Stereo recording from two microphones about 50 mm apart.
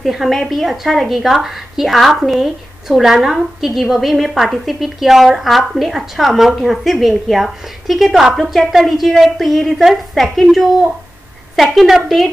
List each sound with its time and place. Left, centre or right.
0.0 s a woman's voice: centre